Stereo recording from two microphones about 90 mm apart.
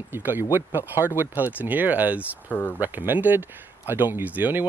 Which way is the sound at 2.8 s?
20° right (ahead or behind).